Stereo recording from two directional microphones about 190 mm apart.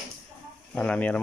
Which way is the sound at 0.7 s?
5° left (ahead or behind).